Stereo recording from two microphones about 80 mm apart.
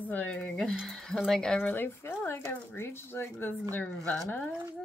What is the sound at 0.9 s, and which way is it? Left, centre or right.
Speech, centre.